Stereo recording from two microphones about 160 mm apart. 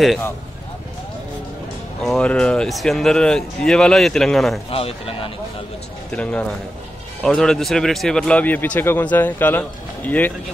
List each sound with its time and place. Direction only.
2.0 s speech: 5° left (ahead or behind)
4.6 s speech: 35° left (ahead or behind)
6.1 s speech: 5° left (ahead or behind)